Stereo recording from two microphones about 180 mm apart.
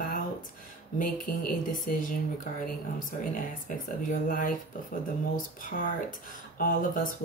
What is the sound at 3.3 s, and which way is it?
A woman's voice, 50° left (ahead or behind).